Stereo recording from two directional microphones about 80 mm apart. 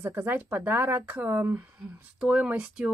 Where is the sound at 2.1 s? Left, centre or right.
Centre.